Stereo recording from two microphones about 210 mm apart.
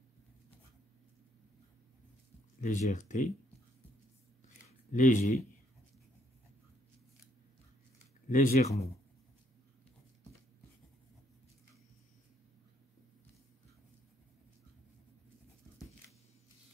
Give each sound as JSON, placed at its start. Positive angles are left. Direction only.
{"t": 2.6, "sound": "speech", "side_deg": 35}
{"t": 4.9, "sound": "speech", "side_deg": 35}
{"t": 8.3, "sound": "speech", "side_deg": 40}